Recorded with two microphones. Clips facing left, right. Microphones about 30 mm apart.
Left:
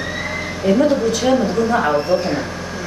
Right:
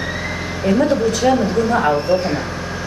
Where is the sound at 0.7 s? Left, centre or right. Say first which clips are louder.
Left 1 dB; centre.